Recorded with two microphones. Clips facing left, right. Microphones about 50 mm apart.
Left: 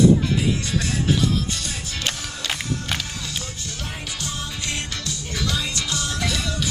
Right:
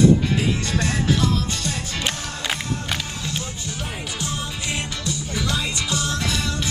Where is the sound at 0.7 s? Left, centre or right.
Centre.